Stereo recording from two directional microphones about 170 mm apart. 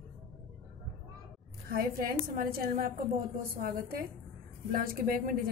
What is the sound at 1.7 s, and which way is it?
A woman's voice, 60° right (ahead or behind).